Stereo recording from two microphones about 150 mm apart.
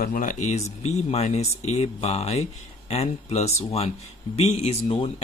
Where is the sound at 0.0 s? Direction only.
65° left (ahead or behind).